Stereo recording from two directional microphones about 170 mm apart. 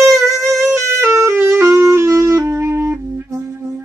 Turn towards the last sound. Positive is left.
turn(degrees=-15)  # may be behind; listen again after turning